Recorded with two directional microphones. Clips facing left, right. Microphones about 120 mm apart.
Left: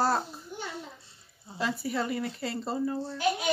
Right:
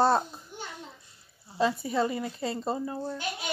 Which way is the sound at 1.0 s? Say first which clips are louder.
Left 2 dB; 25° left (ahead or behind).